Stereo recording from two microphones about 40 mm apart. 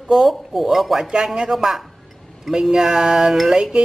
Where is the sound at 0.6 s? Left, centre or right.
Centre.